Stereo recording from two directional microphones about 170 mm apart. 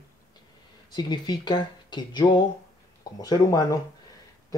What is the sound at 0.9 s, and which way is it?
Speech, 25° left (ahead or behind).